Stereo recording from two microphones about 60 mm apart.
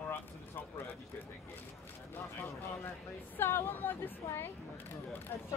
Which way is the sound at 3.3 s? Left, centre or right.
Left.